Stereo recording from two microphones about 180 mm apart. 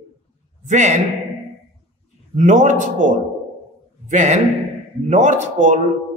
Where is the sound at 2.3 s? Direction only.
40° right (ahead or behind).